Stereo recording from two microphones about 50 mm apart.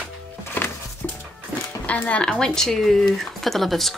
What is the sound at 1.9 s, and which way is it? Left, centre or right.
Speech, left.